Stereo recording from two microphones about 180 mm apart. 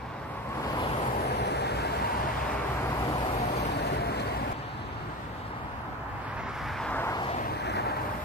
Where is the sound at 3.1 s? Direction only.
30° left (ahead or behind).